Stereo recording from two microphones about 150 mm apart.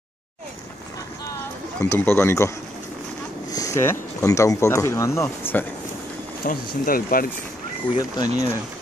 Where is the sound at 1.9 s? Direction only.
15° left (ahead or behind).